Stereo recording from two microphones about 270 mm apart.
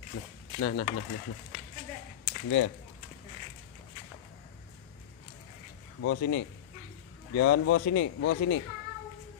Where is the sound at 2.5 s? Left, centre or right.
Left.